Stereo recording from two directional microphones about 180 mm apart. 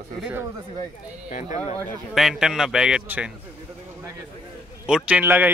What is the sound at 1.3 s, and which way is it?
Speech, 45° left (ahead or behind).